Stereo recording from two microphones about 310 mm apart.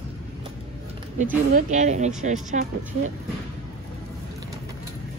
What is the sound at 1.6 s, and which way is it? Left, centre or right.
Speech, right.